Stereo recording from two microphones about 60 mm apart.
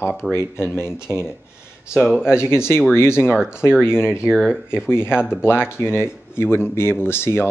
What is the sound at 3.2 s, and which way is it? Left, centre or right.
Speech, centre.